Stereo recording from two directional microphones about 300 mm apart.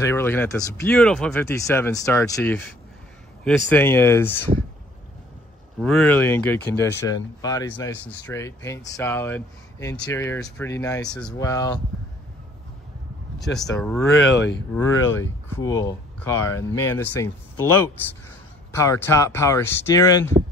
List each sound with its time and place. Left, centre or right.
0.0 s speech: centre
5.8 s speech: centre
13.4 s speech: centre
18.7 s speech: centre